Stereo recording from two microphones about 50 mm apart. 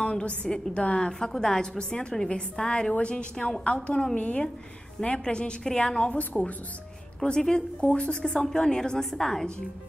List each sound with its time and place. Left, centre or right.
0.0 s a woman's voice: left
7.2 s a woman's voice: centre